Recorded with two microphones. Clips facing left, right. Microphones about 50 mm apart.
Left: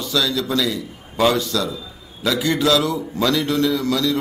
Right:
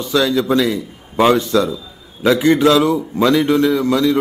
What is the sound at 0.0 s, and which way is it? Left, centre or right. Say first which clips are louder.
A man's voice: right 5 dB; right.